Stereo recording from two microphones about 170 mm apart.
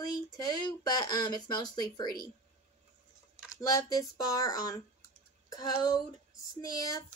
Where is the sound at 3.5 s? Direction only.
20° left (ahead or behind).